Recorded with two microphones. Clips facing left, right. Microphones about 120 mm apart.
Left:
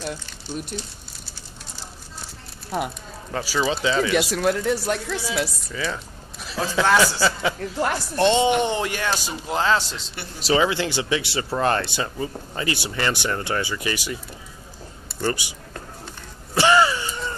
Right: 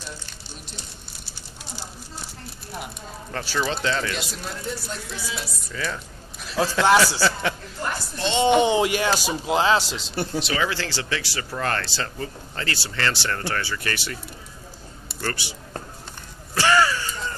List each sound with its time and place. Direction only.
3.3 s speech: 10° left (ahead or behind)
4.1 s speech: 75° left (ahead or behind)
5.7 s a man's voice: 5° left (ahead or behind)
7.7 s a woman's voice: 80° left
8.6 s speech: 10° right (ahead or behind)
9.8 s a man's voice: 90° right
10.4 s a man's voice: 25° left (ahead or behind)
16.5 s gasp: 20° left (ahead or behind)